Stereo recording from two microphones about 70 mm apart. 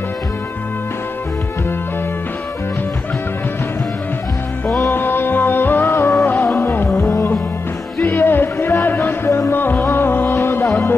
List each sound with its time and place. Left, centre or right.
4.8 s music: left
7.0 s music: left
8.2 s music: left